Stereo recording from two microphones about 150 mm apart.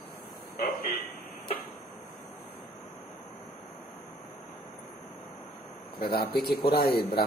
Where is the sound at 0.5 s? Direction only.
80° left.